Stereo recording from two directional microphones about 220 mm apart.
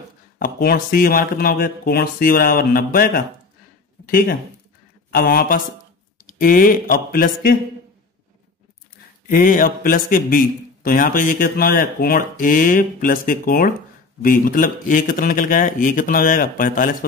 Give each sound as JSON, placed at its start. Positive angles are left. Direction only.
{"t": 0.4, "sound": "a man's voice", "side_deg": 40}
{"t": 5.1, "sound": "a man's voice", "side_deg": 40}
{"t": 9.3, "sound": "a man's voice", "side_deg": 40}